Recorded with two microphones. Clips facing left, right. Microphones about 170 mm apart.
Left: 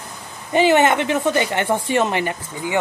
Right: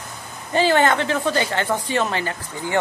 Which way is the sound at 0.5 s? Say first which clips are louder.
Left 3 dB; 20° left (ahead or behind).